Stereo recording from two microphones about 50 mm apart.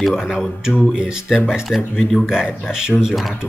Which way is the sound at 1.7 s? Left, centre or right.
Centre.